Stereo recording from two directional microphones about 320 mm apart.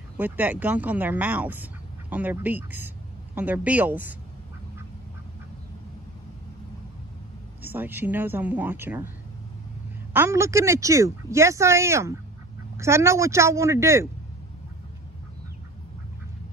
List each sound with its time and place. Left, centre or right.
0.2 s speech: centre
7.6 s speech: centre
10.1 s speech: centre